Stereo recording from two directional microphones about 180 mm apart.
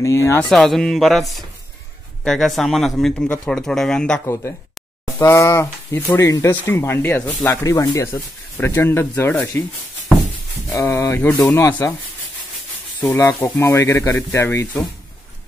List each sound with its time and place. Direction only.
0.0 s speech: 15° left (ahead or behind)
0.5 s speech: centre (ahead or behind)
2.2 s speech: centre (ahead or behind)
4.3 s speech: 15° left (ahead or behind)
10.7 s speech: 15° left (ahead or behind)
13.0 s speech: 15° left (ahead or behind)